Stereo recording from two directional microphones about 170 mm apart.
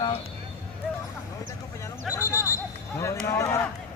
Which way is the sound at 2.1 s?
20° left (ahead or behind).